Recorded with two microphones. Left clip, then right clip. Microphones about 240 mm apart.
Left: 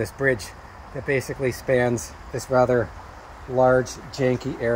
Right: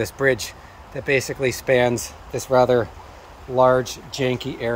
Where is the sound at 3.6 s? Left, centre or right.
Centre.